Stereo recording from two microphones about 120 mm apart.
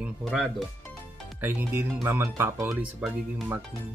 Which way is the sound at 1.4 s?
15° right (ahead or behind).